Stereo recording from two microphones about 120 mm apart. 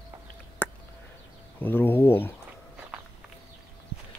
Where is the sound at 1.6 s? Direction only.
15° left (ahead or behind).